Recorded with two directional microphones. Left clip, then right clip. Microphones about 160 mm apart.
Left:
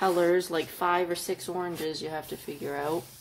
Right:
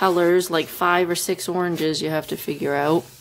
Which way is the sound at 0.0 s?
25° right (ahead or behind).